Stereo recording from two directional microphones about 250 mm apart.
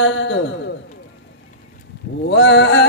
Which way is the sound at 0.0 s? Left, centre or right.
Left.